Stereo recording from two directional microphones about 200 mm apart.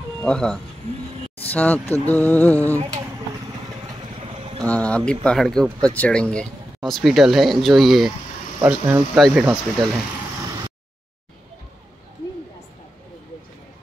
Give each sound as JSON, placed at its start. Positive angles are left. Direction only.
{"t": 0.2, "sound": "speech", "side_deg": 5}
{"t": 4.4, "sound": "boat", "side_deg": -30}
{"t": 4.6, "sound": "speech", "side_deg": 5}
{"t": 8.5, "sound": "speech", "side_deg": -10}